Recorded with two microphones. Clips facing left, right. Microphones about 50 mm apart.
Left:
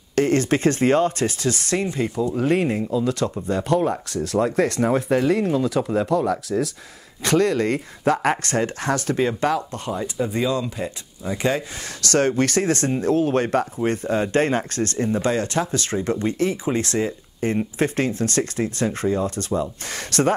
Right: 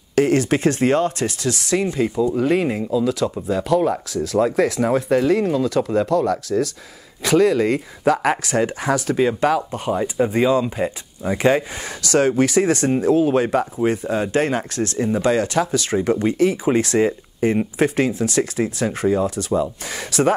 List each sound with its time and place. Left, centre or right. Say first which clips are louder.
0.1 s speech: right 2 dB; centre
9.8 s speech: right 7 dB; right